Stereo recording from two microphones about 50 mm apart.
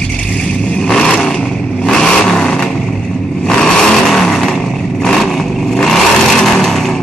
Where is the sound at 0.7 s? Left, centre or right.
Centre.